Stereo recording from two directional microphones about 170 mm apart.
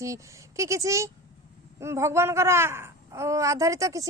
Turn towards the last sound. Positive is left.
turn(degrees=-20)  # may be behind; listen again after turning